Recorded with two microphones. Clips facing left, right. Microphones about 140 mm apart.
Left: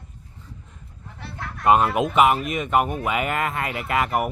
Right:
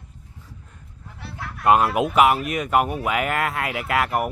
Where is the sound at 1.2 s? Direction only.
5° right (ahead or behind).